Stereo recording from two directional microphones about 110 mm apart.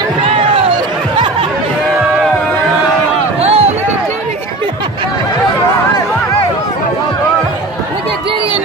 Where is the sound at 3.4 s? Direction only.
70° right (ahead or behind).